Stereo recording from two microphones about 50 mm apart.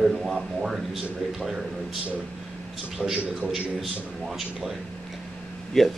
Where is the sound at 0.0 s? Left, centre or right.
Centre.